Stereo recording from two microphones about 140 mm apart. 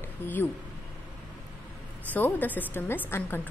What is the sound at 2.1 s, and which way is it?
A woman's voice, 15° left (ahead or behind).